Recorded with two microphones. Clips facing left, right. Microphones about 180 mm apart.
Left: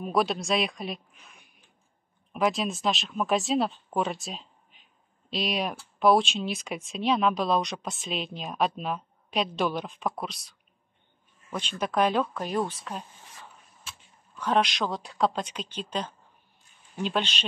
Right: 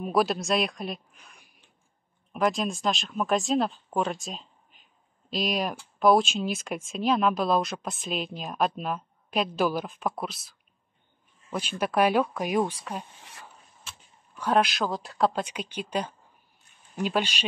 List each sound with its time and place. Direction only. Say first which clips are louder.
0.0 s speech: right 1 dB; centre (ahead or behind)
11.8 s speech: right 2 dB; 10° right (ahead or behind)
13.2 s a sound: right 1 dB; 70° right (ahead or behind)
14.3 s speech: right 1 dB; 5° right (ahead or behind)